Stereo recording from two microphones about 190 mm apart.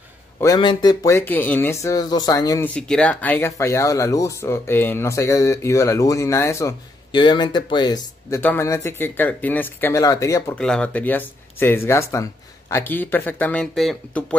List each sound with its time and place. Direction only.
0.4 s speech: 20° left (ahead or behind)
2.7 s speech: 5° left (ahead or behind); by 8.4 s 20° left (ahead or behind)
8.4 s speech: 10° left (ahead or behind)
10.6 s speech: 5° left (ahead or behind)